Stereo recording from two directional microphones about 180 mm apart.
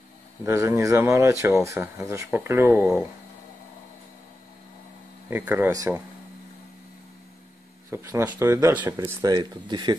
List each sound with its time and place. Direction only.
0.5 s speech: 15° right (ahead or behind)
5.3 s speech: 10° right (ahead or behind)
7.9 s speech: 15° right (ahead or behind)